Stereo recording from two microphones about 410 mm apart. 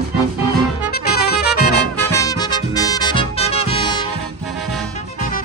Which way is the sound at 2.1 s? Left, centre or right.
Centre.